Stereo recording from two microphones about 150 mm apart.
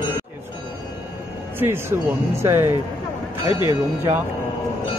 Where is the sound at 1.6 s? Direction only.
15° right (ahead or behind).